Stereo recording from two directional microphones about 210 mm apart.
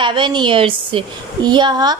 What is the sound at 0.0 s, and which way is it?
A woman's voice, 20° right (ahead or behind).